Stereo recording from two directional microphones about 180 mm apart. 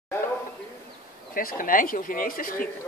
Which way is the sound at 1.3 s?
50° left (ahead or behind).